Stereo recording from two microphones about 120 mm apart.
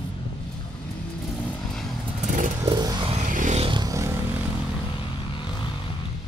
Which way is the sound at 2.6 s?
40° right (ahead or behind).